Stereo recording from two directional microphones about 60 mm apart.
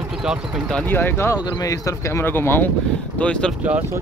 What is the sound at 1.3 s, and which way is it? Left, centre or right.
Speech, left.